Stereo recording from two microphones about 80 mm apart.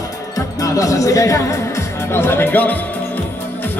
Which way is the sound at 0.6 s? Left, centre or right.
Left.